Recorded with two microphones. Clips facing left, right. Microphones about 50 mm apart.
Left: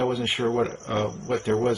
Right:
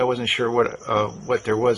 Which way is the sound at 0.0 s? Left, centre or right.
Right.